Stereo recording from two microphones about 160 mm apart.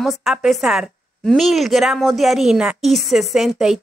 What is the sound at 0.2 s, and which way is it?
Speech, centre (ahead or behind).